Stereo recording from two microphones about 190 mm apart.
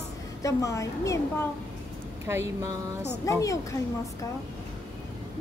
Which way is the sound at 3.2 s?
15° left (ahead or behind).